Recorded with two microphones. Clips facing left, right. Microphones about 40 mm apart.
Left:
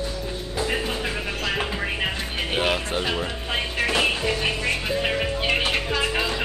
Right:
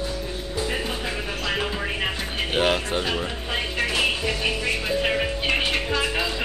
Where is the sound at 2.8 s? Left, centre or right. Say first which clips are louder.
Even; centre.